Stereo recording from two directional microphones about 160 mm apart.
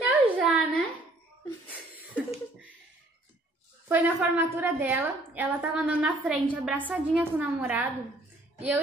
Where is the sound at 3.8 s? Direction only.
10° right (ahead or behind).